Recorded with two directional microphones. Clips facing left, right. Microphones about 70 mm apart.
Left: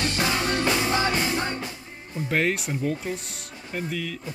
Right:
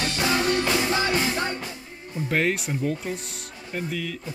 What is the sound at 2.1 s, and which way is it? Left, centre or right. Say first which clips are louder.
Speech: even; centre.